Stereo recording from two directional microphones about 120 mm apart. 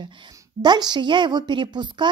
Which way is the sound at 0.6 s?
35° right (ahead or behind).